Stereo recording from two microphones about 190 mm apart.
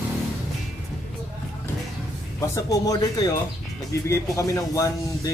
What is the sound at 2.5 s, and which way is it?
Speech, 20° left (ahead or behind).